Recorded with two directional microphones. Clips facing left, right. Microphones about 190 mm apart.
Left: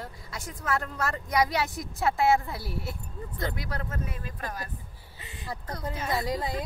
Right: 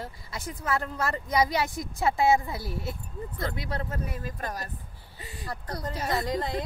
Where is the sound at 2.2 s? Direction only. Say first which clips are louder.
Right 1 dB; 15° right (ahead or behind); by 4.7 s 40° right (ahead or behind).